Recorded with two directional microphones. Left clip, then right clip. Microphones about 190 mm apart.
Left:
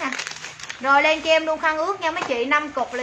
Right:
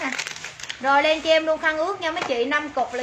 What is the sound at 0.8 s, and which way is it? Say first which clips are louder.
A woman's voice: left 1 dB; 15° left (ahead or behind).